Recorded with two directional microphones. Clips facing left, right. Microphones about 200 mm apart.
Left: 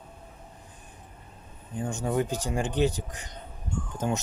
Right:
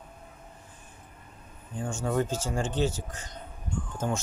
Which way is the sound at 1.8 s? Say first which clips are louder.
Left 1 dB; 20° left (ahead or behind).